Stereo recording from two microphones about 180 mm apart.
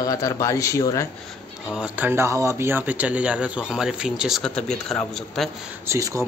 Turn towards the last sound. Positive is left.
turn(degrees=-15)  # may be behind; listen again after turning